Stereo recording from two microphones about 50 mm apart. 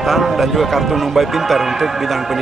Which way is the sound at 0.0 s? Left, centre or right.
Centre.